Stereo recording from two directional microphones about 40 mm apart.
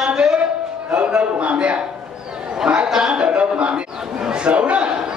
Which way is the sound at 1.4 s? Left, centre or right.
Right.